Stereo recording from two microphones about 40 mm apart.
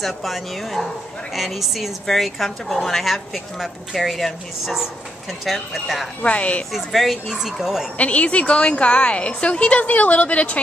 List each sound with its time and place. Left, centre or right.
0.0 s speech: centre
6.2 s a woman's voice: left
6.7 s speech: centre
8.0 s a woman's voice: left